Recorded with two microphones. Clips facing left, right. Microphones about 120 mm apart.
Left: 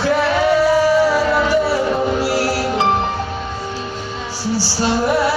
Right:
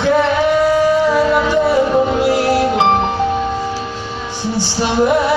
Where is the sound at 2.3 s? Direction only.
20° right (ahead or behind).